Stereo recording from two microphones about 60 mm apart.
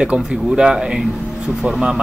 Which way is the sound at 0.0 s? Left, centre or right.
Centre.